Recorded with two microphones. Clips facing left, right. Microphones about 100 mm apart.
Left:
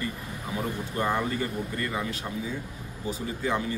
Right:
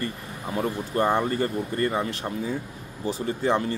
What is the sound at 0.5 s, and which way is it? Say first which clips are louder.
A man's voice: right 6 dB; 40° right (ahead or behind).